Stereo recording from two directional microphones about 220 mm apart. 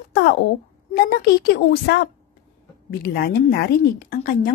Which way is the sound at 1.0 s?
45° left (ahead or behind).